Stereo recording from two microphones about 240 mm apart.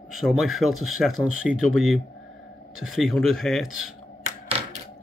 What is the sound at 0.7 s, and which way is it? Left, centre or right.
Speech, right.